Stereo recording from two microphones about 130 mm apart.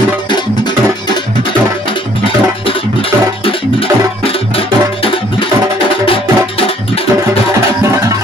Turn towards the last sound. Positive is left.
turn(degrees=45)  # may be behind; listen again after turning